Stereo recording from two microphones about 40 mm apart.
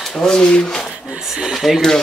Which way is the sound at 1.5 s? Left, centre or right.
Centre.